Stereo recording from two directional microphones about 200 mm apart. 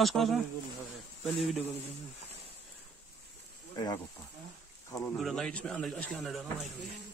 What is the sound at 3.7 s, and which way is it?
Speech, 20° left (ahead or behind).